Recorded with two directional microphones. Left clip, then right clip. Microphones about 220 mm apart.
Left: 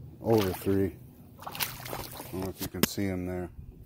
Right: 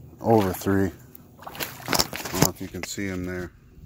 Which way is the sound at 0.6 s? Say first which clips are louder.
Right 4 dB; 45° right (ahead or behind).